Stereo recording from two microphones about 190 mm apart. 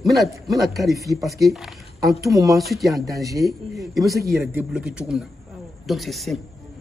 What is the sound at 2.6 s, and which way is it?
Speech, centre (ahead or behind).